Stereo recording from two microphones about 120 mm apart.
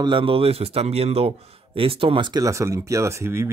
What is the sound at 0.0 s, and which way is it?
Speech, 45° right (ahead or behind).